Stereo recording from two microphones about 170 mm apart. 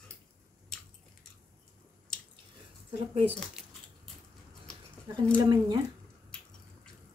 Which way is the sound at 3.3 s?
5° left (ahead or behind).